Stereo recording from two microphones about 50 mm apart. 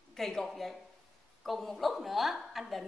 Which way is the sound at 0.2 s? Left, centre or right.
Centre.